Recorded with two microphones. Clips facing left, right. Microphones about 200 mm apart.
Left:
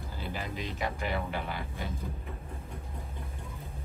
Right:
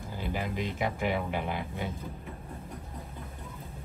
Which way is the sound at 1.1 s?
15° right (ahead or behind).